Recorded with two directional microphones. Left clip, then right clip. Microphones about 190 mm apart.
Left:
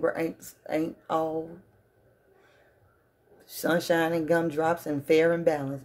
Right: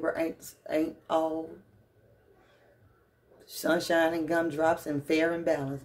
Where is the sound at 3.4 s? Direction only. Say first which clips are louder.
Left 2 dB; 35° left (ahead or behind).